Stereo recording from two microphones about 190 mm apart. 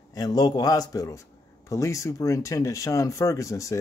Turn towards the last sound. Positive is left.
turn(degrees=15)  # may be behind; listen again after turning